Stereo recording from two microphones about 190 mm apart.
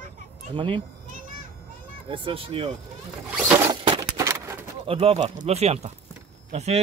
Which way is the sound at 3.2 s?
5° right (ahead or behind).